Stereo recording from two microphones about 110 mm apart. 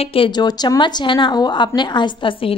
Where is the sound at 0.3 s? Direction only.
40° left (ahead or behind).